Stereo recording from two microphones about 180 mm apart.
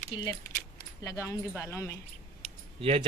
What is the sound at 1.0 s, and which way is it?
Speech, 15° left (ahead or behind).